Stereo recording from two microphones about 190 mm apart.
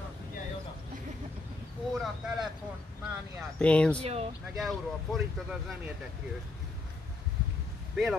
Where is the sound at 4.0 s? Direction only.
35° right (ahead or behind).